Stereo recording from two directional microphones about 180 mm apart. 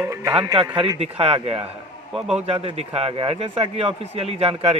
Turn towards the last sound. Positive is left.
turn(degrees=-35)  # may be behind; listen again after turning